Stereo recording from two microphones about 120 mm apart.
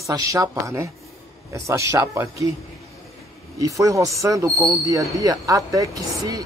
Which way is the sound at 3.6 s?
30° right (ahead or behind).